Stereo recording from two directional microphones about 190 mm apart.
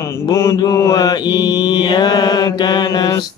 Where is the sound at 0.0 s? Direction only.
15° left (ahead or behind).